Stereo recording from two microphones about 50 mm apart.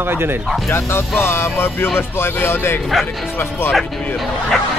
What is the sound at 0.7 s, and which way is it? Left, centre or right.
Speech, left.